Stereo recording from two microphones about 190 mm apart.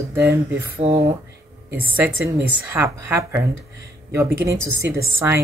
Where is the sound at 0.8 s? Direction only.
35° right (ahead or behind).